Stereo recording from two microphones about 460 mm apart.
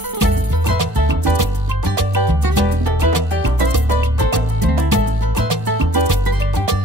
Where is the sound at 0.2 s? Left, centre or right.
Right.